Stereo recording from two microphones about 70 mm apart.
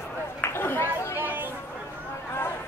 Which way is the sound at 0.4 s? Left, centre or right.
Left.